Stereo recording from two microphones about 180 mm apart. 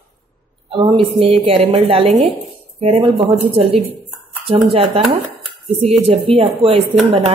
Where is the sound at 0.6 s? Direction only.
30° right (ahead or behind).